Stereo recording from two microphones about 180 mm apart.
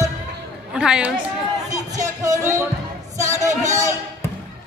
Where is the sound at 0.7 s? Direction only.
5° right (ahead or behind).